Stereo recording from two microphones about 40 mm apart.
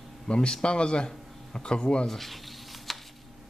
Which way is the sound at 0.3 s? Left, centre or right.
Left.